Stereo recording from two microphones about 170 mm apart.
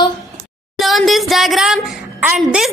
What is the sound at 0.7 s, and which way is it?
Speech, centre (ahead or behind).